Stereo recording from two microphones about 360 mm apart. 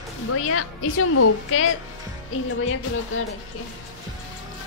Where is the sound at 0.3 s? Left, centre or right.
Left.